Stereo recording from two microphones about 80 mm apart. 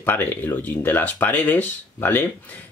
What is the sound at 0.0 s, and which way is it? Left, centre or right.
Speech, left.